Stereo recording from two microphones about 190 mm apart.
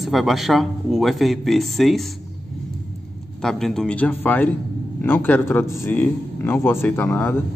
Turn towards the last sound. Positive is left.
turn(degrees=10)  # may be behind; listen again after turning